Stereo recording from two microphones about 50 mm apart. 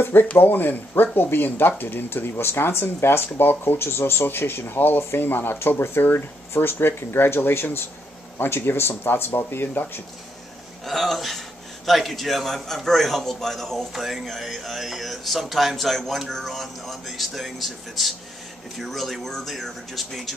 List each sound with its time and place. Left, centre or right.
0.0 s speech: left
10.9 s a man's voice: centre